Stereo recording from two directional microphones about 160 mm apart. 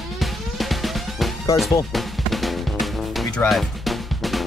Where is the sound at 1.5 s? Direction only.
Centre (ahead or behind).